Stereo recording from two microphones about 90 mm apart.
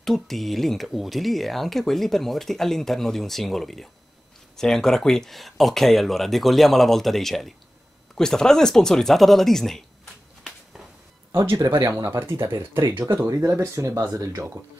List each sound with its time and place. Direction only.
0.0 s speech: centre (ahead or behind)
11.3 s speech: 35° right (ahead or behind)